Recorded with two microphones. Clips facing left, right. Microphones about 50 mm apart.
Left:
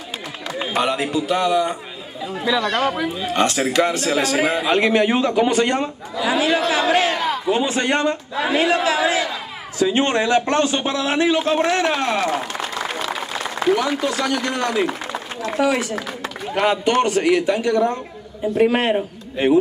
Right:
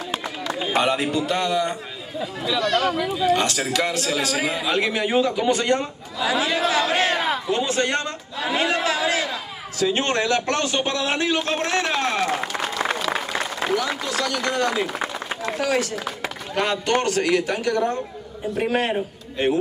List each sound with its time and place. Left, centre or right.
0.7 s a man's voice: centre
2.6 s a man's voice: left
13.7 s a man's voice: left
15.6 s a man's voice: centre
18.7 s a man's voice: left
19.3 s a man's voice: centre